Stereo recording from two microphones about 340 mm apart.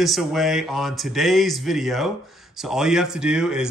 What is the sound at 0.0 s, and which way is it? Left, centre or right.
Speech, centre.